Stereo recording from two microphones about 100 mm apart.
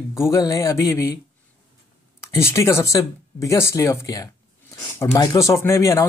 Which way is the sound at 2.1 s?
30° left (ahead or behind).